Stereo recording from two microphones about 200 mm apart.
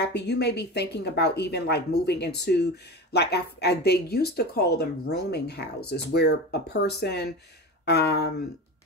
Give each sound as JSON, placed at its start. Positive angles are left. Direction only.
{"t": 0.0, "sound": "speech", "side_deg": 55}